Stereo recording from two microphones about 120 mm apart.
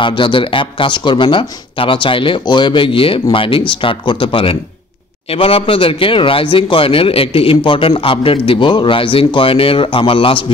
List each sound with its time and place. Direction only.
0.0 s speech: 45° left (ahead or behind)